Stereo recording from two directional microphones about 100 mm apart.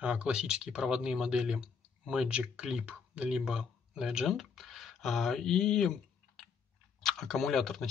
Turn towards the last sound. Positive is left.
turn(degrees=5)  # may be behind; listen again after turning